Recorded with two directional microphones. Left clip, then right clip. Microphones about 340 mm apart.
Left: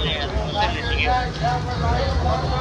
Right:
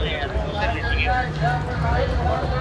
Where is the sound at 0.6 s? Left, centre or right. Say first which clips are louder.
Left 2 dB; left.